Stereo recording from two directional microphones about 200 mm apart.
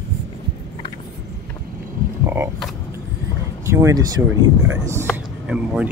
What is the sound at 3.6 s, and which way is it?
Speech, 15° right (ahead or behind).